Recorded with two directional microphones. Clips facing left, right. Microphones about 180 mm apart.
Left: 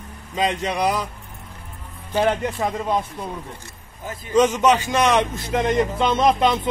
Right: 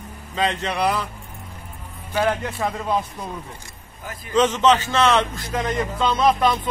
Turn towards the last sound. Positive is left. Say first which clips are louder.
# left 1 dB
turn(degrees=20)  # may be behind; listen again after turning